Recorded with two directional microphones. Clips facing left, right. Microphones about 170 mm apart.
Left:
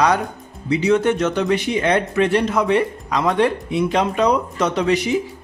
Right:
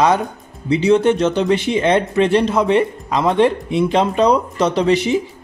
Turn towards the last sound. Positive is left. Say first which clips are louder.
# right 3 dB
turn(degrees=-30)  # may be behind; listen again after turning